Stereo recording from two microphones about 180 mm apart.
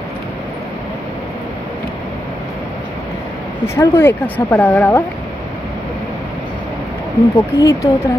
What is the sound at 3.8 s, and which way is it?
A woman's voice, 10° left (ahead or behind).